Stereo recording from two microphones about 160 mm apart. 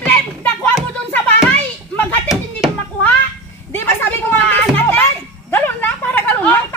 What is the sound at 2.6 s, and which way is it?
Children playing, 5° right (ahead or behind).